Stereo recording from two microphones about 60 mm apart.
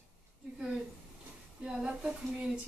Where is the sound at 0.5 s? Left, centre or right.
Centre.